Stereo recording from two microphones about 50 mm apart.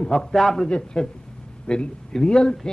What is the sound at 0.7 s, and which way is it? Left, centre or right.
A man's voice, left.